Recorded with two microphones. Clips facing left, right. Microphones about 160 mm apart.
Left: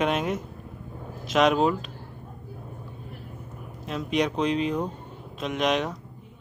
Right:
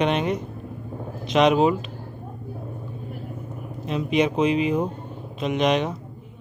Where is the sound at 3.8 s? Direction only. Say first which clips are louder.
Right 4 dB; centre (ahead or behind).